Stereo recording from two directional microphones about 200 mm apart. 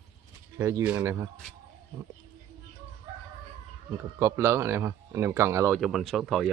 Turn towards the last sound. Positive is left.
turn(degrees=0)  # may be behind; listen again after turning